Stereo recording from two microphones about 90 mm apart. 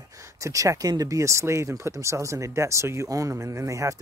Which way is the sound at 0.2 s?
35° right (ahead or behind).